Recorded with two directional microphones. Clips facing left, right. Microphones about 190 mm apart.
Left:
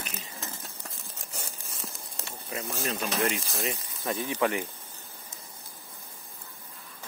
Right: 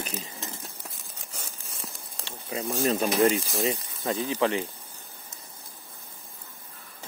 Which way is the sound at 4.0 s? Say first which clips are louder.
Right 1 dB; 20° right (ahead or behind).